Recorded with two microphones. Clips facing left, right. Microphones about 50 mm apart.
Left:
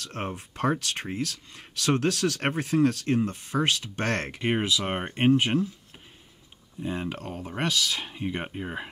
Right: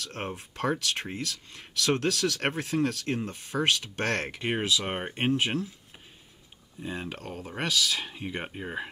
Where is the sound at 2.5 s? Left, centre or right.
Left; by 5.1 s centre.